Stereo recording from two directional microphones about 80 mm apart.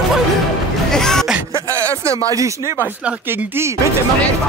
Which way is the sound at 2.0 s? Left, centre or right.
Right.